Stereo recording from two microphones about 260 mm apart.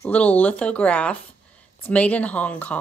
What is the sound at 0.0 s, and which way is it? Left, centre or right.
Speech, centre.